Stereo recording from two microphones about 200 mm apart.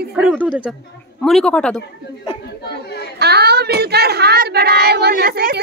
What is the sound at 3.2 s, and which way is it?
A child's voice, 55° right (ahead or behind).